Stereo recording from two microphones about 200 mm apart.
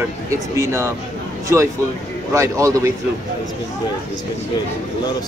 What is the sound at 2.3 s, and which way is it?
Speech, 15° right (ahead or behind).